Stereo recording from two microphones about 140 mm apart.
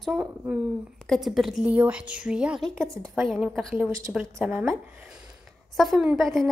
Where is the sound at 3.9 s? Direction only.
25° right (ahead or behind).